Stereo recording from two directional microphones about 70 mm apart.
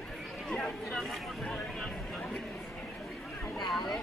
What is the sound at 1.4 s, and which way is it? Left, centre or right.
Vehicle, centre.